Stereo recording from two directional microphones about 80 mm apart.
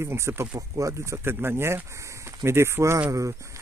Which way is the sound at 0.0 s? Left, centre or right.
Right.